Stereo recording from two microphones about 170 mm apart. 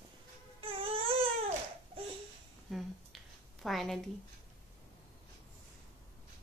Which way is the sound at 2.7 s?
Centre (ahead or behind).